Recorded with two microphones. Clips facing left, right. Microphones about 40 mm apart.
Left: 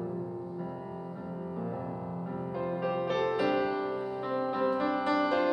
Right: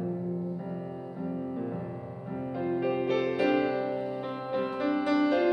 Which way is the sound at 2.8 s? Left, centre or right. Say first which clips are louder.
Right 2 dB; centre.